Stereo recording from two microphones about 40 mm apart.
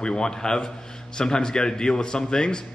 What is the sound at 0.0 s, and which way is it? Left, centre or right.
A man's voice, centre.